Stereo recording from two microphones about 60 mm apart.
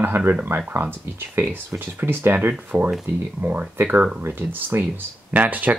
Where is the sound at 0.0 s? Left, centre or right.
Right.